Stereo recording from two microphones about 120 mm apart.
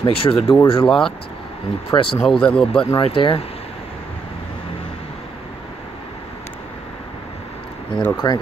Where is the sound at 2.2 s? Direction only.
5° left (ahead or behind).